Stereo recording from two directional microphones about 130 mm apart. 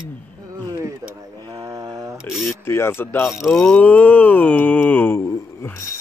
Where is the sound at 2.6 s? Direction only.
20° left (ahead or behind).